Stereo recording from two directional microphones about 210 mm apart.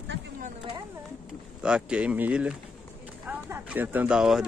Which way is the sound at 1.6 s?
5° right (ahead or behind).